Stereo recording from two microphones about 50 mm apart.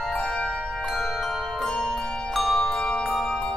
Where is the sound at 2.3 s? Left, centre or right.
Centre.